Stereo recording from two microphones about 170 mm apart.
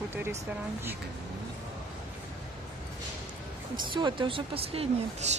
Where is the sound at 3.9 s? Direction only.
30° right (ahead or behind).